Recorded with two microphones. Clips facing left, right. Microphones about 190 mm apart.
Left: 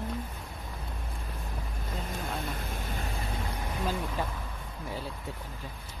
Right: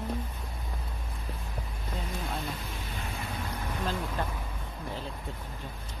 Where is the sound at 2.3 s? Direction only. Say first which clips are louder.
Left 1 dB; 50° left (ahead or behind).